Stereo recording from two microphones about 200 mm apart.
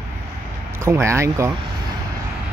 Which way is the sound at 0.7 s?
15° right (ahead or behind).